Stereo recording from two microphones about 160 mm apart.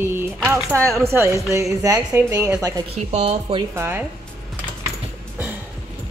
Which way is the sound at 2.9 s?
40° right (ahead or behind).